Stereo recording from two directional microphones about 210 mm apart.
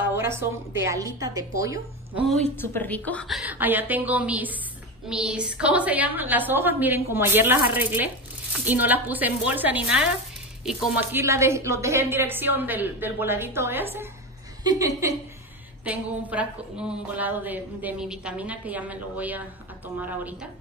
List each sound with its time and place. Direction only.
0.1 s a woman's voice: 10° right (ahead or behind)
2.6 s a woman's voice: 10° left (ahead or behind); by 19.4 s 5° right (ahead or behind)